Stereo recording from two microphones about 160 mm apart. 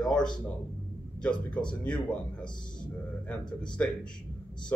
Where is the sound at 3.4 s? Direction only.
30° left (ahead or behind).